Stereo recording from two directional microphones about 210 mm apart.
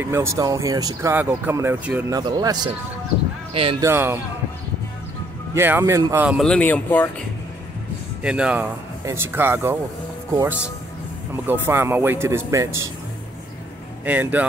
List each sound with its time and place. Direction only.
0.0 s speech: 10° right (ahead or behind)
3.8 s speech: 10° right (ahead or behind)
5.5 s speech: 10° right (ahead or behind); by 7.1 s 10° left (ahead or behind)
8.2 s speech: 5° right (ahead or behind)
14.0 s speech: 10° right (ahead or behind)